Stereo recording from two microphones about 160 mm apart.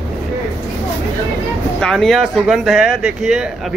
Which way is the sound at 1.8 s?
Centre (ahead or behind).